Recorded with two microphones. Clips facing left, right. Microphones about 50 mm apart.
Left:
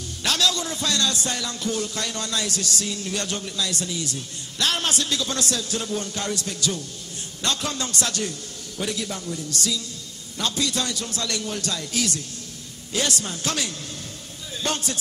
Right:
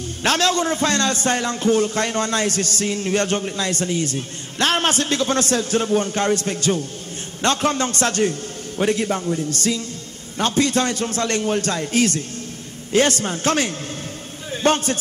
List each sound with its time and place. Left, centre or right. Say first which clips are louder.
0.2 s a man's voice: right 5 dB; right